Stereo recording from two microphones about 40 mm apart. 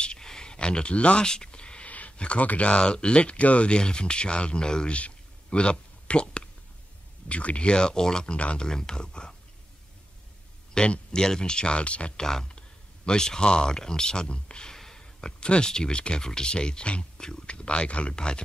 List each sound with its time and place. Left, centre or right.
0.0 s a sound: centre
1.2 s speech: centre
1.9 s a sound: left
2.1 s speech: left
4.9 s a sound: left
7.2 s speech: left
8.4 s speech: left
8.6 s speech: centre
10.7 s speech: left
12.2 s speech: centre
14.8 s a sound: centre
15.1 s speech: left